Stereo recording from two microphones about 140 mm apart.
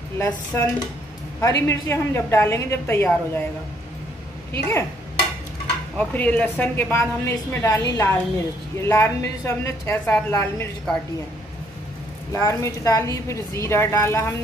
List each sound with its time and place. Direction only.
0.2 s a woman's voice: 15° left (ahead or behind)
4.5 s a woman's voice: 15° left (ahead or behind)
5.9 s a woman's voice: 10° left (ahead or behind)
12.3 s a woman's voice: 20° left (ahead or behind)